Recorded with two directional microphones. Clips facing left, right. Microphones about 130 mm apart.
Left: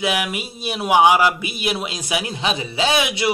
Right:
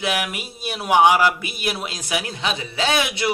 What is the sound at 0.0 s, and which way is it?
A man's voice, 5° left (ahead or behind).